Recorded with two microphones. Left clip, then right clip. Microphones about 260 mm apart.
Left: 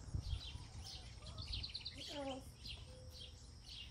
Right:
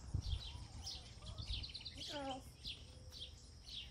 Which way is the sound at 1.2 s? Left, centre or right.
Right.